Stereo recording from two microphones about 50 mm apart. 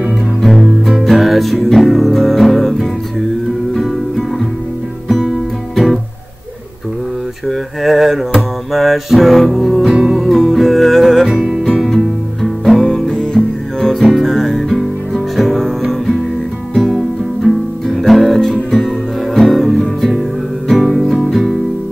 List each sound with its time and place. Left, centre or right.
0.4 s music: centre
5.0 s guitar: centre
7.4 s music: centre
17.4 s music: right
17.8 s music: centre